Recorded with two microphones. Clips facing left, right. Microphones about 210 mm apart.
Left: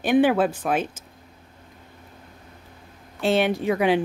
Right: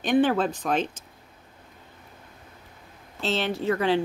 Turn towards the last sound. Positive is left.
turn(degrees=15)  # may be behind; listen again after turning